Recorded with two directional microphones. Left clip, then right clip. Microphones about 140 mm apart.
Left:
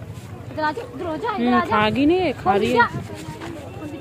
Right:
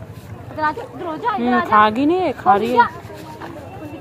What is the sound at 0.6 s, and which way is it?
Speech, 25° left (ahead or behind).